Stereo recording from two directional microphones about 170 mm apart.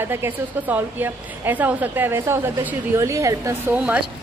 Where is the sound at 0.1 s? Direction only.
10° right (ahead or behind).